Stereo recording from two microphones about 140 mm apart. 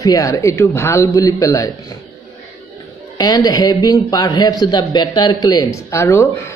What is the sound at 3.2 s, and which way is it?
A man's voice, 25° left (ahead or behind).